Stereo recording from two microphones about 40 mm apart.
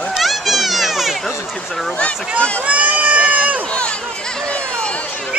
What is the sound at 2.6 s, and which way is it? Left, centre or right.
Speech, right.